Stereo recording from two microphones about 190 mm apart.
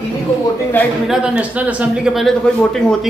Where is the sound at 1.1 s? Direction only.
5° right (ahead or behind).